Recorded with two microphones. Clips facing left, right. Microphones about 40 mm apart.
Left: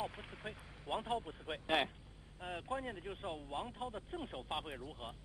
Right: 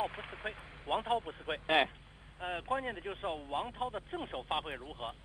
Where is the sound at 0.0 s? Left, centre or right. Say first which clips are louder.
Right 6 dB; right.